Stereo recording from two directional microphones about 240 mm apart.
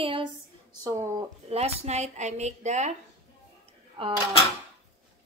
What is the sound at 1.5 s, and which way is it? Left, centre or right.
A woman's voice, right.